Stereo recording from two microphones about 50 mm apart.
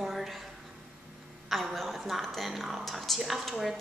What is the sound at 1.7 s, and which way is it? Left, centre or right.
A woman's voice, centre.